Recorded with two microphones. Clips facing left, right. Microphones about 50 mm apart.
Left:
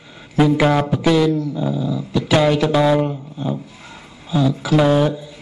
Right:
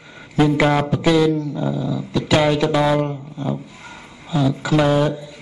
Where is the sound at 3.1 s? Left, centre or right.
Right.